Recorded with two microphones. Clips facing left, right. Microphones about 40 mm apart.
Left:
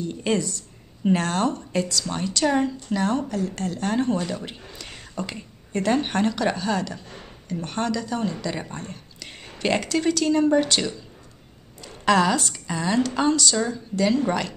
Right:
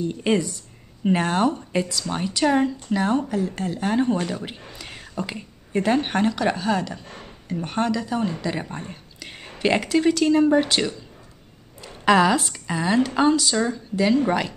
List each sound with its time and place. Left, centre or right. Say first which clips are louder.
0.2 s a woman's voice: right 1 dB; centre
7.1 s a sound: right 2 dB; centre
7.5 s a woman's voice: right 2 dB; centre